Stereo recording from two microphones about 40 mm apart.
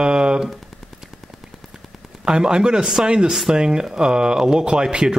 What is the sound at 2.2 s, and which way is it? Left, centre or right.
Speech, centre.